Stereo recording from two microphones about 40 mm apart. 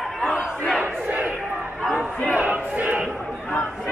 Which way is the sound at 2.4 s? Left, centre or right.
Right.